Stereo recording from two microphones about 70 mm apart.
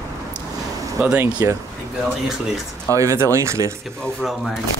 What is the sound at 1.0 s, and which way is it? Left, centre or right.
Speech, right.